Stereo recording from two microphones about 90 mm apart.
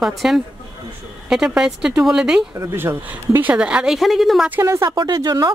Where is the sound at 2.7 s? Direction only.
25° right (ahead or behind); by 4.5 s centre (ahead or behind).